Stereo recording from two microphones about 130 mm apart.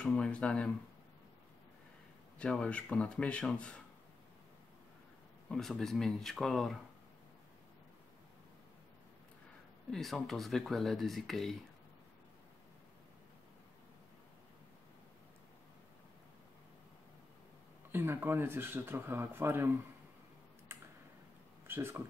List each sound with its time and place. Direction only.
0.0 s a man's voice: 10° left (ahead or behind)
2.3 s a man's voice: 10° left (ahead or behind)
5.5 s speech: 5° left (ahead or behind)
9.8 s speech: centre (ahead or behind)
17.9 s speech: 15° right (ahead or behind)
21.6 s speech: 20° right (ahead or behind)